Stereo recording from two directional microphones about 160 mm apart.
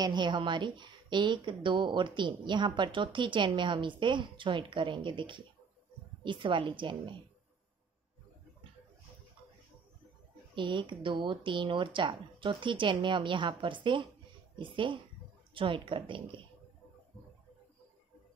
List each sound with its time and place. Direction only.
0.0 s a woman's voice: 30° right (ahead or behind)
10.5 s a woman's voice: 30° right (ahead or behind)